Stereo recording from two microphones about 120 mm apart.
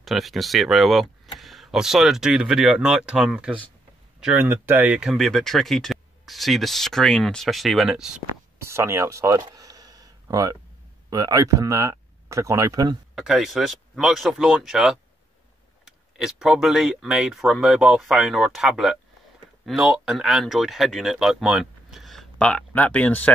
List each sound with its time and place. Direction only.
0.0 s speech: centre (ahead or behind)
5.1 s speech: centre (ahead or behind)
8.5 s a sound: 20° right (ahead or behind)
11.1 s speech: 30° right (ahead or behind)
13.1 s speech: 5° right (ahead or behind); by 23.3 s 15° left (ahead or behind)